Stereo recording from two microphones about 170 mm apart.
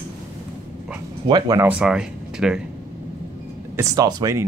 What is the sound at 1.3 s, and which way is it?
Speech, 25° right (ahead or behind).